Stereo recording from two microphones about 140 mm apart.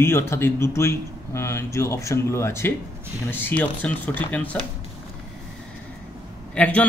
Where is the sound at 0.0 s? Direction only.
20° left (ahead or behind).